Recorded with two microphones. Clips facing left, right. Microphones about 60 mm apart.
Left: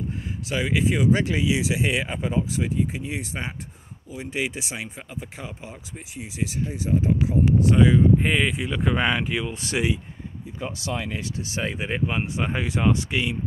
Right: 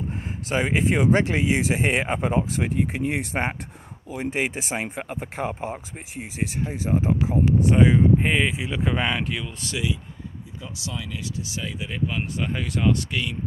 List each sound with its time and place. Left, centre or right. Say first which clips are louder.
0.5 s speech: right 1 dB; right
4.8 s speech: right 5 dB; right
8.2 s speech: even; centre
9.5 s speech: left 3 dB; left
10.6 s speech: left 5 dB; left
11.1 s speech: left 1 dB; left
12.2 s speech: left 2 dB; left